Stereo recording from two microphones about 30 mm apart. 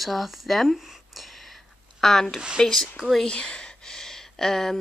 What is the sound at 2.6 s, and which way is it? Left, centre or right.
Speech, left.